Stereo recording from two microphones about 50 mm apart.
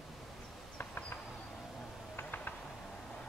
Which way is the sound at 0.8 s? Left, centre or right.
Left.